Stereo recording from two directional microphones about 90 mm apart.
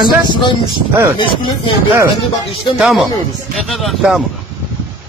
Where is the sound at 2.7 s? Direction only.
5° right (ahead or behind).